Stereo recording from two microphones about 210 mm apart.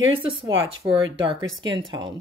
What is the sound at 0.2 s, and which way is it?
Speech, 25° right (ahead or behind).